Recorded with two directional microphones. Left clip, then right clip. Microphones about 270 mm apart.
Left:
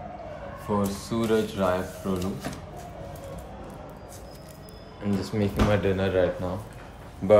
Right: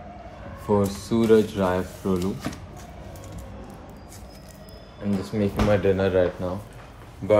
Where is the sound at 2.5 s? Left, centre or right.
Right.